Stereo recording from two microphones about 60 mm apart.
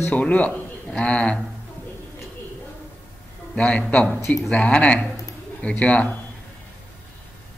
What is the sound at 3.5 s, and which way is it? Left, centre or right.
A man's voice, centre.